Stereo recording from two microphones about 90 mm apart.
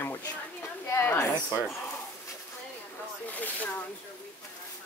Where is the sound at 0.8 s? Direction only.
30° left (ahead or behind).